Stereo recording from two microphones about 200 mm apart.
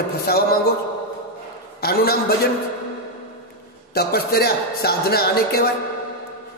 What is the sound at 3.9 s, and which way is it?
A man's voice, 50° left (ahead or behind).